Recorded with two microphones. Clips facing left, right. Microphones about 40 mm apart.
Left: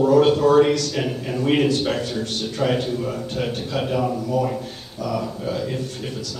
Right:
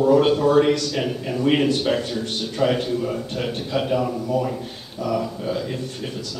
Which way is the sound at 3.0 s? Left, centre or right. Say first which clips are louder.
Even; centre.